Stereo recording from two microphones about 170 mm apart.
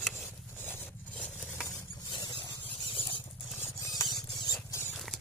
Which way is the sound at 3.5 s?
15° left (ahead or behind).